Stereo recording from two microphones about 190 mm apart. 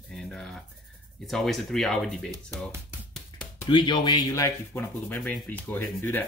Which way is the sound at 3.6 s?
25° left (ahead or behind).